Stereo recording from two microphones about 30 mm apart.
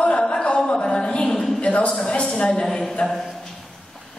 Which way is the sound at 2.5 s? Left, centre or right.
Left.